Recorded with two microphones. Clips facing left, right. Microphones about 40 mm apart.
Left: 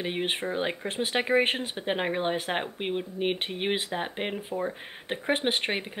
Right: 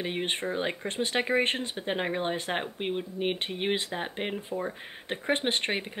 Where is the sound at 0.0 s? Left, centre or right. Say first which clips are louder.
Left 1 dB; centre.